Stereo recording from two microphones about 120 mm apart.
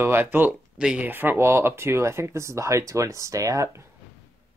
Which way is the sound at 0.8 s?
5° right (ahead or behind).